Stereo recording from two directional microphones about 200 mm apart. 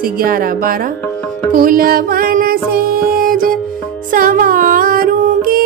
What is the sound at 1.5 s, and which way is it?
Music, 45° right (ahead or behind).